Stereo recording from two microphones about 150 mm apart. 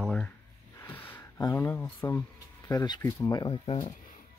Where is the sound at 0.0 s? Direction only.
5° left (ahead or behind).